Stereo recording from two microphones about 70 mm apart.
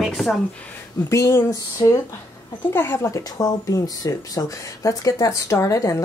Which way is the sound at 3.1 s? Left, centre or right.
Left.